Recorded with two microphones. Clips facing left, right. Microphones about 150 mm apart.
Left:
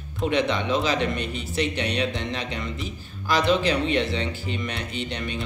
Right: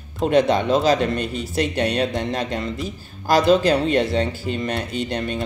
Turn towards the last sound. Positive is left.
turn(degrees=-40)  # may be behind; listen again after turning